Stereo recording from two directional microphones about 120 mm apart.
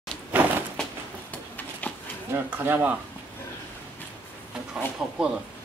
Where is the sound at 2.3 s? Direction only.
20° right (ahead or behind).